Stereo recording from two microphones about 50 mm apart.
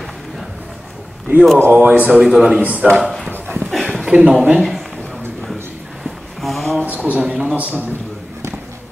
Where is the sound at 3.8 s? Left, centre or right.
Centre.